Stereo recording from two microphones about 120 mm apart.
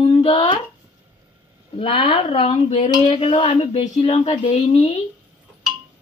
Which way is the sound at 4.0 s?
65° left (ahead or behind).